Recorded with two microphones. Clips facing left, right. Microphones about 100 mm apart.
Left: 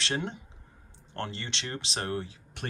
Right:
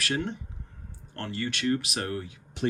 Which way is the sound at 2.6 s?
55° left (ahead or behind).